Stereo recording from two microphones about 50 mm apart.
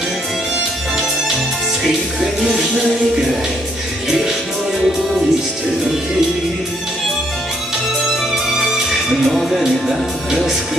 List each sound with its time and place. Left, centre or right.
2.1 s music: centre
8.5 s music: centre
9.6 s speech: centre